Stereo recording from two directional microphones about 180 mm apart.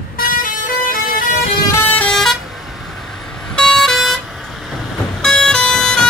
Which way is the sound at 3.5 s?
5° left (ahead or behind).